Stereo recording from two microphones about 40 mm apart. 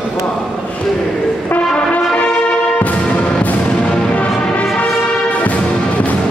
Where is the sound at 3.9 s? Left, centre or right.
Left.